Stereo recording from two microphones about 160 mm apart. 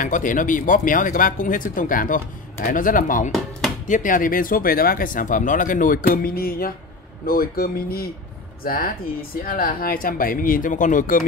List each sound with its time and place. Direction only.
0.0 s speech: 55° left (ahead or behind)